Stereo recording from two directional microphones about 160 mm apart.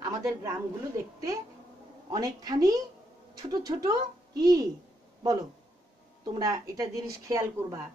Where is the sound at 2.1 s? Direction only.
25° right (ahead or behind).